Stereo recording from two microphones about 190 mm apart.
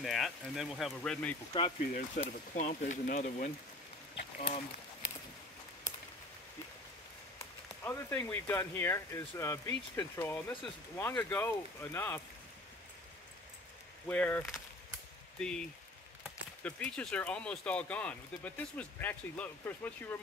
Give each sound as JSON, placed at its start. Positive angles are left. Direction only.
{"t": 0.0, "sound": "speech", "side_deg": 0}
{"t": 1.5, "sound": "speech", "side_deg": 25}
{"t": 2.0, "sound": "speech", "side_deg": 40}
{"t": 7.8, "sound": "speech", "side_deg": 10}
{"t": 14.0, "sound": "speech", "side_deg": 10}
{"t": 16.6, "sound": "speech", "side_deg": 5}